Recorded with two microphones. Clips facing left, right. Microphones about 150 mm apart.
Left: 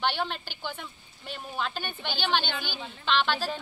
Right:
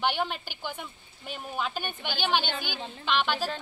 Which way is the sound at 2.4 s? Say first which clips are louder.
Right 1 dB; 45° right (ahead or behind).